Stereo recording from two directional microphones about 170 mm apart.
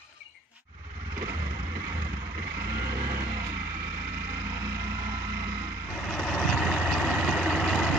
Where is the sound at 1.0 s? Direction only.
20° right (ahead or behind).